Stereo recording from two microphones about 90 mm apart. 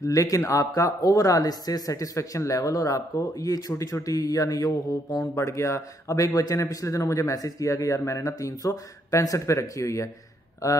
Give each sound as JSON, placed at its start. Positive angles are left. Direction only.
{"t": 0.0, "sound": "speech", "side_deg": 40}